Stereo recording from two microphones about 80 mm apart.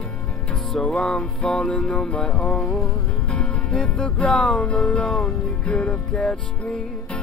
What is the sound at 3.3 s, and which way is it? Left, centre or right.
Music, centre.